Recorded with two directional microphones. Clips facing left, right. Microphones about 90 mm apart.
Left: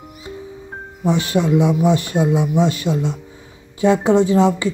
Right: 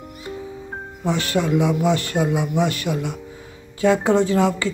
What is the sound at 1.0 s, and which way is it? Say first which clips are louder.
Speech: left 4 dB; 20° left (ahead or behind).